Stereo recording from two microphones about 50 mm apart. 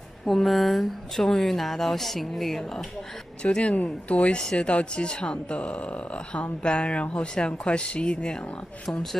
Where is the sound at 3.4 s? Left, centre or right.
Left.